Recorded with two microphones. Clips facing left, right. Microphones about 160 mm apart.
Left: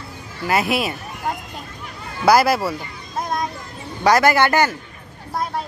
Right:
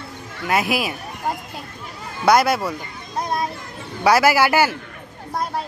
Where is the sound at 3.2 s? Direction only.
Centre (ahead or behind).